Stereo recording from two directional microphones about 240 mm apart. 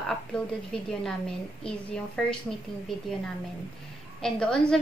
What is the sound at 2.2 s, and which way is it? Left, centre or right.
Speech, centre.